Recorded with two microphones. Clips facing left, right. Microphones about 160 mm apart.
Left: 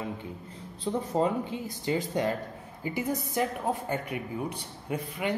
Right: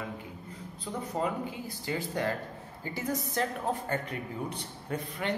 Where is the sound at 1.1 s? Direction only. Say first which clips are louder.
Left 4 dB; 25° left (ahead or behind).